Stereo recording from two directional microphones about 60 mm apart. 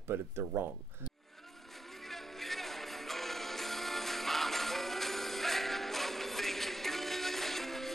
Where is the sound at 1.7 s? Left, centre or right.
Centre.